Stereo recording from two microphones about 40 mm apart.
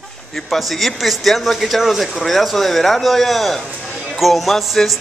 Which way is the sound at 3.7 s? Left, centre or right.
Left.